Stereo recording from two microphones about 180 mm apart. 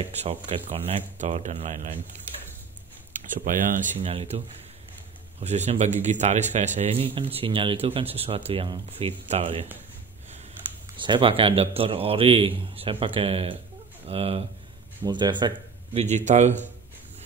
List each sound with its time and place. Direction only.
0.0 s a man's voice: 35° right (ahead or behind)
3.3 s speech: 45° right (ahead or behind)
4.0 s a man's voice: 30° right (ahead or behind)
5.4 s a man's voice: 40° right (ahead or behind)
11.0 s a man's voice: 25° right (ahead or behind)